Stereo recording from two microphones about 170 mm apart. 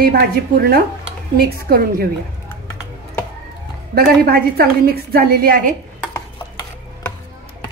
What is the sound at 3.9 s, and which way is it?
A woman's voice, 60° right (ahead or behind).